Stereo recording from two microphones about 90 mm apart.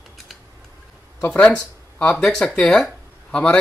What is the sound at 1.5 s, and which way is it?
Speech, 10° left (ahead or behind).